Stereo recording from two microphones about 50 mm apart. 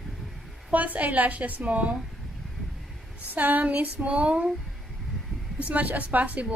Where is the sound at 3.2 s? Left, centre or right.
Right.